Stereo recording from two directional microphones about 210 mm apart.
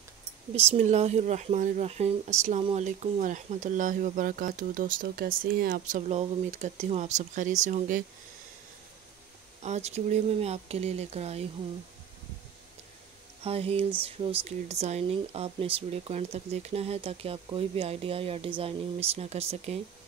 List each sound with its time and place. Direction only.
0.7 s speech: 30° right (ahead or behind)
9.6 s speech: 30° right (ahead or behind)
13.4 s speech: 30° right (ahead or behind)